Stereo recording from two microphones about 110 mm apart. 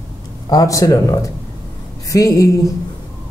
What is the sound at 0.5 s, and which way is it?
Speech, 30° left (ahead or behind).